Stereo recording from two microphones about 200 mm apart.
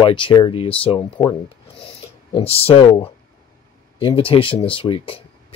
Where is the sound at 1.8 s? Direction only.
25° left (ahead or behind).